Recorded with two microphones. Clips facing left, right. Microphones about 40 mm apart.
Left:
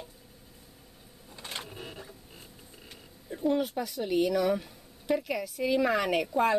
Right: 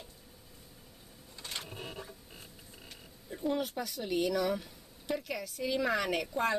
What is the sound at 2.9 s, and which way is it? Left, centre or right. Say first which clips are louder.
Speech: left 4 dB; centre.